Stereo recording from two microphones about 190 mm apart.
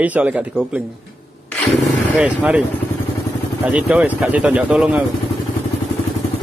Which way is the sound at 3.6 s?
10° right (ahead or behind).